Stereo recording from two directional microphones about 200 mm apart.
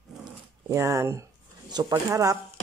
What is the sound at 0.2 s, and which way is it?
Speech, 15° right (ahead or behind).